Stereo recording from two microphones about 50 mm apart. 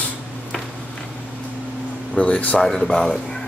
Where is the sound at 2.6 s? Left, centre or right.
Centre.